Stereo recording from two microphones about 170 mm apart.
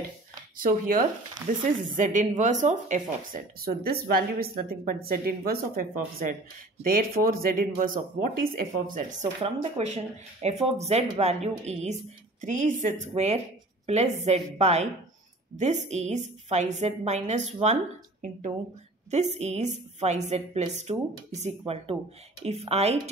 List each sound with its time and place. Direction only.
0.6 s a woman's voice: 55° right (ahead or behind)
1.4 s speech: 15° right (ahead or behind)
2.0 s a woman's voice: 50° right (ahead or behind)
9.4 s a woman's voice: 40° right (ahead or behind)
19.0 s speech: 40° right (ahead or behind)